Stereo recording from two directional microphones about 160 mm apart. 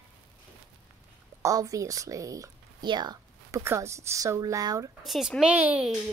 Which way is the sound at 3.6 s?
15° right (ahead or behind).